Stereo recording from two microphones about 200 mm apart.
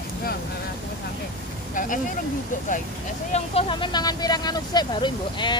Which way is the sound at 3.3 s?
25° left (ahead or behind).